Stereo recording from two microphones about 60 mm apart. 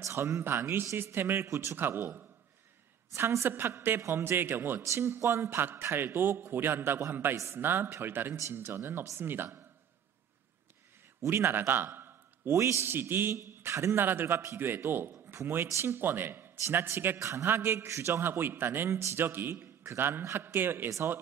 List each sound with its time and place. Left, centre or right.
0.0 s a woman's voice: right
11.2 s a man's voice: right
12.5 s a woman's voice: right
17.2 s a woman's voice: right